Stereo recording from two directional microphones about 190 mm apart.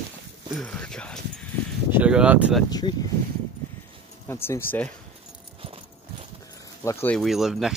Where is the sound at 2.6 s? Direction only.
20° left (ahead or behind).